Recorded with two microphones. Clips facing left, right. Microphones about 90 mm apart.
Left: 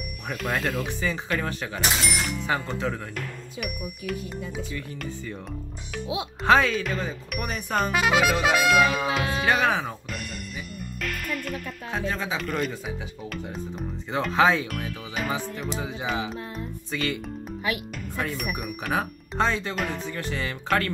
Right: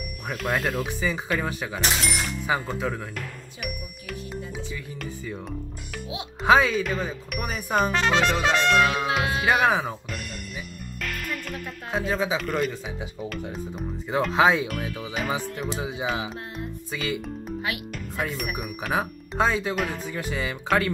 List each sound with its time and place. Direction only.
0.3 s speech: centre (ahead or behind)
7.9 s speech: 10° left (ahead or behind)
9.5 s speech: 10° right (ahead or behind)
11.0 s speech: centre (ahead or behind)